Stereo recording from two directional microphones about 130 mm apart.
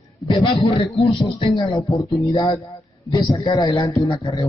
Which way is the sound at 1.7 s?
25° left (ahead or behind).